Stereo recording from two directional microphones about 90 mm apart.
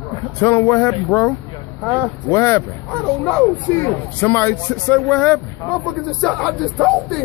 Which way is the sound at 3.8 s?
25° left (ahead or behind).